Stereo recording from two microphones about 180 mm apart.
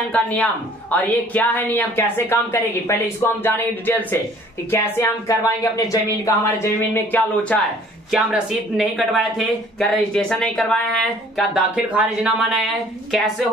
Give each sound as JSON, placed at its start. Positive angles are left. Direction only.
{"t": 0.1, "sound": "speech", "side_deg": 10}
{"t": 8.1, "sound": "speech", "side_deg": 0}